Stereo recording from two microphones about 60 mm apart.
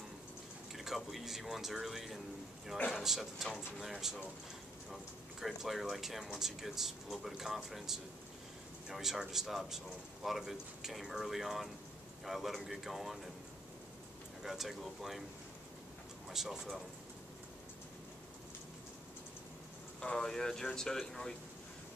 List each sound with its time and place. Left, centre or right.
0.7 s speech: centre
5.4 s speech: centre
14.4 s speech: centre
16.3 s speech: centre
20.0 s speech: centre